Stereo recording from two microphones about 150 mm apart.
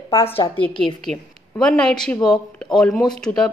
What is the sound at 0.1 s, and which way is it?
A woman's voice, 20° left (ahead or behind).